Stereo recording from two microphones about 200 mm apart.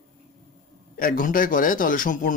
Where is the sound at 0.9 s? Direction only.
45° left (ahead or behind).